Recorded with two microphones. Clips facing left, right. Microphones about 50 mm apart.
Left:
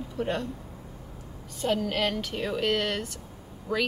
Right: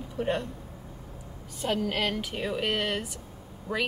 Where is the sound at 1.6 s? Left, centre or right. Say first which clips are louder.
Left 2 dB; centre.